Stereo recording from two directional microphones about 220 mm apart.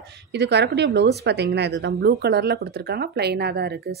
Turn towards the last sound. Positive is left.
turn(degrees=-45)  # may be behind; listen again after turning